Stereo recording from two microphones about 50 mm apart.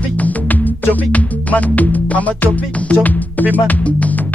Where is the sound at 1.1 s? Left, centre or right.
Left.